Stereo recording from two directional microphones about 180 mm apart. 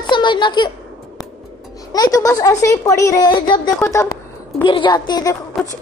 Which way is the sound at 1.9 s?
20° left (ahead or behind).